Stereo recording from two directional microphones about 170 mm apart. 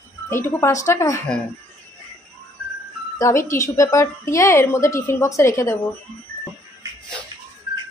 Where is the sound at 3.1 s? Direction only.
20° left (ahead or behind).